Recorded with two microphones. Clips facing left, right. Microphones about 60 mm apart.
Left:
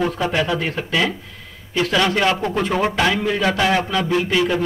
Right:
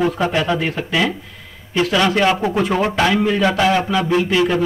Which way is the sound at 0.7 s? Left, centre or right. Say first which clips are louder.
Right 1 dB; centre.